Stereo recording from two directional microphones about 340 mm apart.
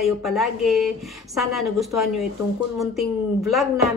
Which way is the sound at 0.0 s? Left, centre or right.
Centre.